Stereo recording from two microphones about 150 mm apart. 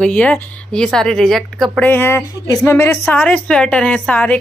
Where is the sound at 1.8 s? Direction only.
15° left (ahead or behind).